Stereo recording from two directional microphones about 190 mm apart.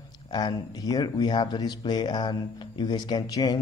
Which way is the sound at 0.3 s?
20° left (ahead or behind).